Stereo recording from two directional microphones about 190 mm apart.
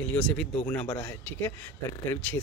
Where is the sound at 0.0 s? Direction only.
5° left (ahead or behind).